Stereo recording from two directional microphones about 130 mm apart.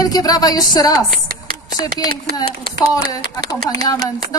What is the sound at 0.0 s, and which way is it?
A woman's voice, 30° left (ahead or behind).